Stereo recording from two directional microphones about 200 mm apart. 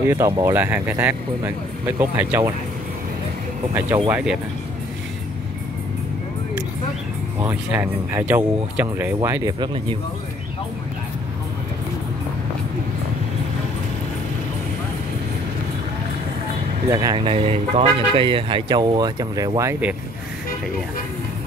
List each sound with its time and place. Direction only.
0.0 s speech: 15° right (ahead or behind)
4.1 s speech: 5° right (ahead or behind)
7.3 s speech: 10° right (ahead or behind)
16.9 s speech: 20° right (ahead or behind)